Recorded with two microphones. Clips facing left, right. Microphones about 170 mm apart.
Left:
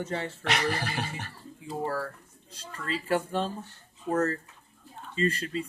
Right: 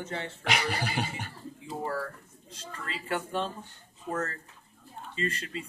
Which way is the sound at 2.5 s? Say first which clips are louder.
Left 5 dB; 35° left (ahead or behind).